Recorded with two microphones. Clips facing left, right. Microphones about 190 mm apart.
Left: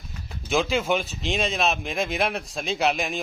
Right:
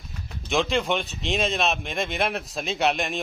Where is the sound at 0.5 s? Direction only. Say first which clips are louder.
Left 1 dB; centre (ahead or behind).